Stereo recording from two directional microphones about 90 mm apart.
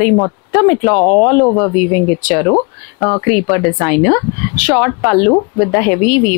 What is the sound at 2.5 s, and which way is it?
Speech, 30° left (ahead or behind).